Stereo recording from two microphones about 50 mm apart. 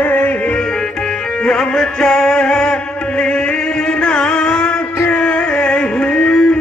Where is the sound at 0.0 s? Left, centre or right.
Left.